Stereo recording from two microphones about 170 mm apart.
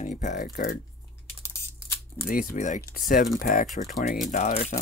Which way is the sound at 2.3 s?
55° left (ahead or behind).